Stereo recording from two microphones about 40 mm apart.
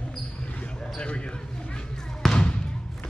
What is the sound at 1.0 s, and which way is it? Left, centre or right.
Speech, left.